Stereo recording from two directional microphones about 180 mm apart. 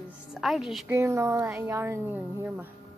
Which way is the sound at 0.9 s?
15° right (ahead or behind).